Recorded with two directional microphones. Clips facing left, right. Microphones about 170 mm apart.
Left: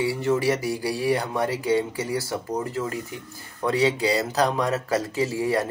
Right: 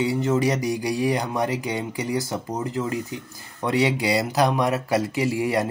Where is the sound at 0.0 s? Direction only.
20° right (ahead or behind).